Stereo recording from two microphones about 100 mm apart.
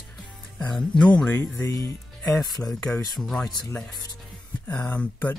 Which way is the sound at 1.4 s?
30° left (ahead or behind).